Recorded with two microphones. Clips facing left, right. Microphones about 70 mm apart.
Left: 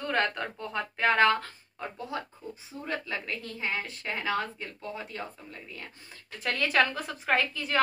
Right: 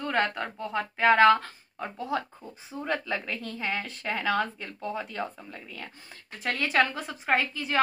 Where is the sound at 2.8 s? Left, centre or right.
Right.